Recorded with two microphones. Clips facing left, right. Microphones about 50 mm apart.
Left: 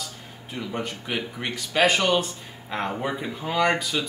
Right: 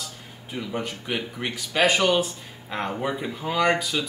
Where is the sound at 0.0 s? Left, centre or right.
Centre.